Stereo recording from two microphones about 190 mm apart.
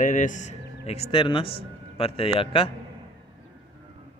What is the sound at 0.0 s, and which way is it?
Speech, 45° left (ahead or behind).